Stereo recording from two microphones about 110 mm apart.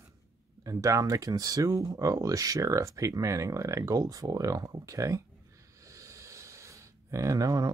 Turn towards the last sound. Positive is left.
turn(degrees=-35)  # may be behind; listen again after turning